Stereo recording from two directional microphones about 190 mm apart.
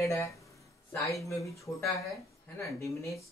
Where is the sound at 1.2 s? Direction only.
15° left (ahead or behind).